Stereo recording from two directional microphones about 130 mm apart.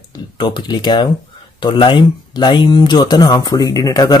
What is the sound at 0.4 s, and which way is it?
Speech, 35° left (ahead or behind).